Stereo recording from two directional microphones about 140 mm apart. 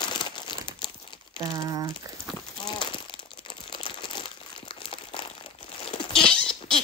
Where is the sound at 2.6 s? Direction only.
35° left (ahead or behind).